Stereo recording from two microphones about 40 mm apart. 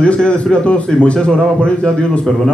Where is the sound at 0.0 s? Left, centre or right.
Left.